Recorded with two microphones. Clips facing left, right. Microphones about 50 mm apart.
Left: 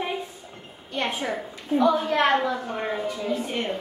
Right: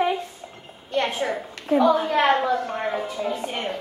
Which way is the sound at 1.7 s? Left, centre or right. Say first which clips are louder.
Right 3 dB; right.